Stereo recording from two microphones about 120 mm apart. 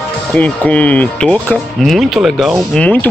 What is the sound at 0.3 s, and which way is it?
Speech, 10° left (ahead or behind).